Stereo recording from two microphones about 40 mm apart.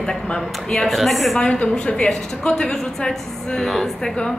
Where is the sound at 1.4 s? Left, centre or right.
Left.